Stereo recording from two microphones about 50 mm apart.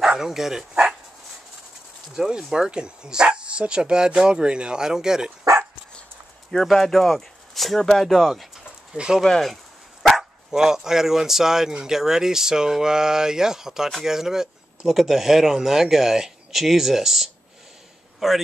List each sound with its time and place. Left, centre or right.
0.1 s speech: centre
2.1 s speech: centre
6.5 s speech: centre
8.9 s speech: centre
9.2 s speech: centre
10.5 s speech: centre